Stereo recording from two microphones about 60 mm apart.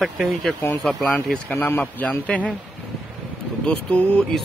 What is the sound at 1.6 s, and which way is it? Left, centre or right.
Speech, left.